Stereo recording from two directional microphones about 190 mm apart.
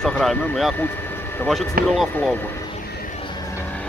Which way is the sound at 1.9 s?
Centre (ahead or behind).